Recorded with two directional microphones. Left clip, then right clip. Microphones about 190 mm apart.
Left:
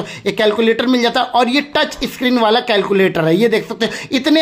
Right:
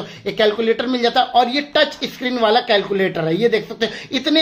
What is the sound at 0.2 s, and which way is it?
Speech, 35° left (ahead or behind).